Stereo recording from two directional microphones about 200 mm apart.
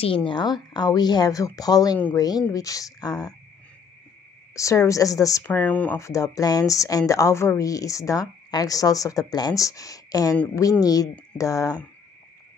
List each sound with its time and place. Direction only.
0.0 s a woman's voice: 25° left (ahead or behind)
4.6 s a woman's voice: 15° left (ahead or behind)